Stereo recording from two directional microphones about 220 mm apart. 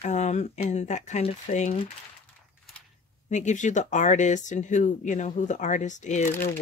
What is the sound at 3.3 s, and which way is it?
Speech, 35° left (ahead or behind).